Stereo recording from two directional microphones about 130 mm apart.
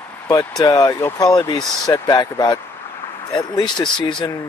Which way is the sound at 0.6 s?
30° left (ahead or behind).